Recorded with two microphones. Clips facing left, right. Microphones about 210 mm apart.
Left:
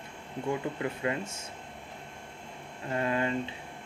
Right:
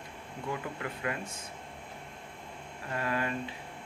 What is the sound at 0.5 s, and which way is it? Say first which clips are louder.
Speech: left 5 dB; 25° left (ahead or behind).